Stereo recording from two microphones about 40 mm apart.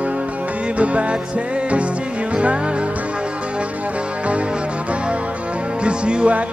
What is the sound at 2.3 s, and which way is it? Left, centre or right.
Music, right.